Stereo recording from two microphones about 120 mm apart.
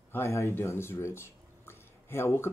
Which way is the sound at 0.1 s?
20° left (ahead or behind).